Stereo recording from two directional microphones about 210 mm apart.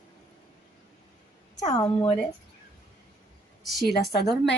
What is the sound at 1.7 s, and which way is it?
Speech, 25° left (ahead or behind).